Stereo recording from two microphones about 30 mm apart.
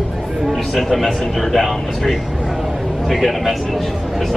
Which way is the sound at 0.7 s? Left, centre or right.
Centre.